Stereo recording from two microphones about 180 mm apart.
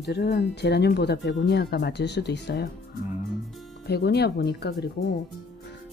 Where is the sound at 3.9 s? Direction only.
65° left (ahead or behind).